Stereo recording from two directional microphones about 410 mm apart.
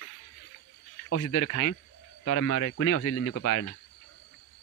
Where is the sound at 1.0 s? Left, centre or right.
Left.